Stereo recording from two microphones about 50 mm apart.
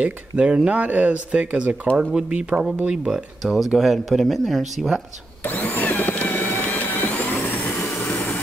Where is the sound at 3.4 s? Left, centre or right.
Centre.